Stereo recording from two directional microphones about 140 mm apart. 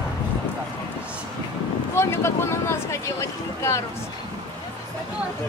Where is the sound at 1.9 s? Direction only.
20° left (ahead or behind).